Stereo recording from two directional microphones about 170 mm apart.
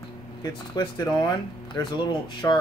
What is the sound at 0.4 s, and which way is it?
Speech, 25° left (ahead or behind).